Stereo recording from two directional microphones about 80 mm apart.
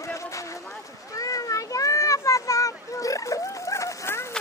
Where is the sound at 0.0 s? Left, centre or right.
Left.